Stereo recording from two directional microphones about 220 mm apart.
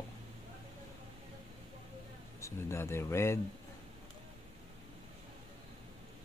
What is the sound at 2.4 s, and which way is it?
Speech, 10° left (ahead or behind).